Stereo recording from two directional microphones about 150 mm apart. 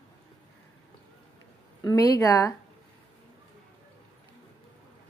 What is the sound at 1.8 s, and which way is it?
Speech, 25° left (ahead or behind).